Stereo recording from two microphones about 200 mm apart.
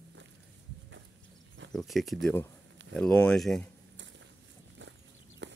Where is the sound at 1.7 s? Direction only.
Centre (ahead or behind).